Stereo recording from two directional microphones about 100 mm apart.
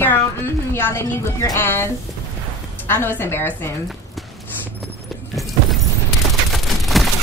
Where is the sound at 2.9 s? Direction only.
20° left (ahead or behind).